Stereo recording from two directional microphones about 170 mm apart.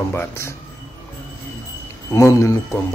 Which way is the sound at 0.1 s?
15° left (ahead or behind).